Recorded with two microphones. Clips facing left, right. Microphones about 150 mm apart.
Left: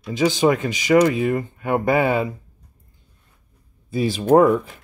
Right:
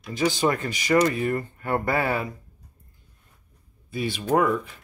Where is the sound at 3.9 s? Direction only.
35° left (ahead or behind).